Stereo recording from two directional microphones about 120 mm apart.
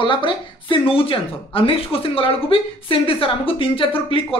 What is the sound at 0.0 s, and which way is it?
Speech, 45° left (ahead or behind).